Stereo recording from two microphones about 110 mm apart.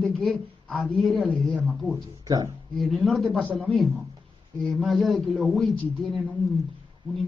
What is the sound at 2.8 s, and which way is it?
A man's voice, centre (ahead or behind).